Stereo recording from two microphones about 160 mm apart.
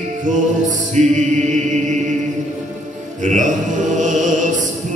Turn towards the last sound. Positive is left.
turn(degrees=-50)  # may be behind; listen again after turning